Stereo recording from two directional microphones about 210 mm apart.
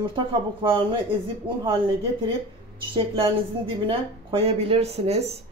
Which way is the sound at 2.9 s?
25° right (ahead or behind).